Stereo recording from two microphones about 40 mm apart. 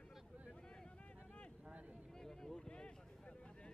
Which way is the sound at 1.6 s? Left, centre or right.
Right.